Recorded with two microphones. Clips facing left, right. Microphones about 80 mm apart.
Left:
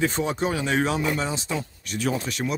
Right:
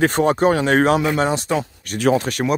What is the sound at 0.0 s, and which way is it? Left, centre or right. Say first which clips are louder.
Speech: right 9 dB; right.